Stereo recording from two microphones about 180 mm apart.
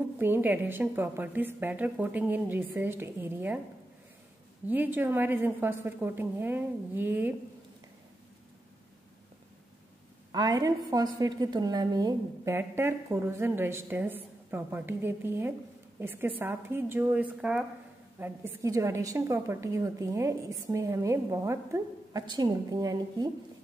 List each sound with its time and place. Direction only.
0.2 s a woman's voice: 10° right (ahead or behind)
4.6 s a woman's voice: 10° right (ahead or behind)
10.3 s a woman's voice: 20° right (ahead or behind); by 17.6 s 5° right (ahead or behind)
18.2 s a woman's voice: 15° right (ahead or behind)